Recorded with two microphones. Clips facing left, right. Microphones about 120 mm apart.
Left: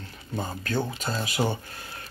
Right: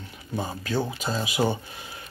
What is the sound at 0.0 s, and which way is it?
Speech, 10° right (ahead or behind).